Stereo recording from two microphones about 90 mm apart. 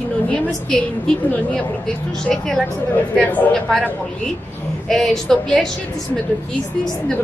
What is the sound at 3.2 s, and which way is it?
Speech, 20° left (ahead or behind).